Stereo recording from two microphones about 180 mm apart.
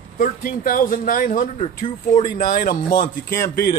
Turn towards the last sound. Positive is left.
turn(degrees=55)  # may be behind; listen again after turning